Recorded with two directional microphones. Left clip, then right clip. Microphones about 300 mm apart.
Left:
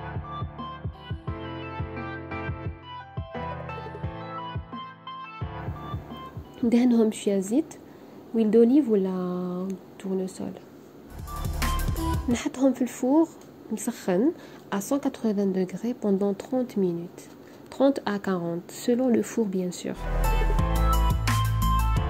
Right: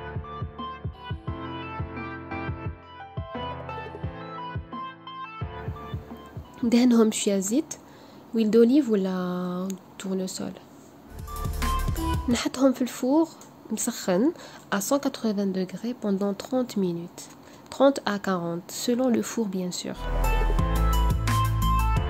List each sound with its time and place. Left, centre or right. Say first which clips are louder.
1.4 s music: right 1 dB; centre
6.7 s a woman's voice: right 2 dB; centre
11.4 s music: right 1 dB; centre
12.3 s a woman's voice: right 2 dB; centre
17.7 s a sound: right 2 dB; centre